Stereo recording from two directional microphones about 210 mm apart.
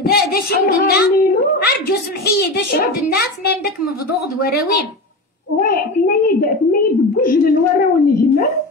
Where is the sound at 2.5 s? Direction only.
50° left (ahead or behind).